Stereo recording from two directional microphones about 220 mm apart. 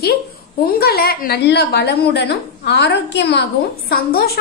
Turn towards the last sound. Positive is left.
turn(degrees=45)  # may be behind; listen again after turning